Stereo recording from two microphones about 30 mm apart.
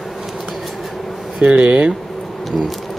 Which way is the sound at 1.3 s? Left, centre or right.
Right.